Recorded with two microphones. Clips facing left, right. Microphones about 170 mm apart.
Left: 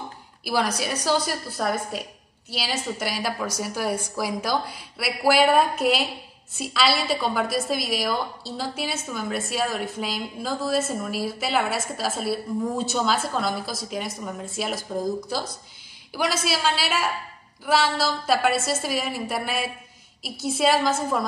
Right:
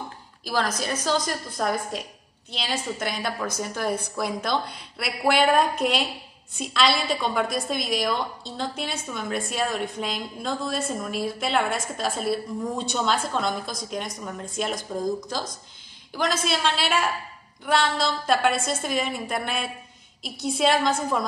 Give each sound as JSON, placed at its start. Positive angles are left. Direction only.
{"t": 0.4, "sound": "a woman's voice", "side_deg": 10}